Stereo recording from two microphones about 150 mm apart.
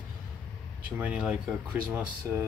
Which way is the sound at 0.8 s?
10° right (ahead or behind).